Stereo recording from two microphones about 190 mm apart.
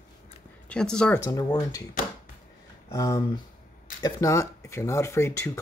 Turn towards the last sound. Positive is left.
turn(degrees=15)  # may be behind; listen again after turning